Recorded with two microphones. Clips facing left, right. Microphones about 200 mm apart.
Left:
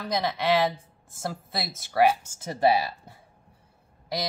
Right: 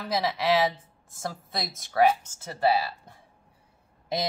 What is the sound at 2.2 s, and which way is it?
Speech, 15° left (ahead or behind).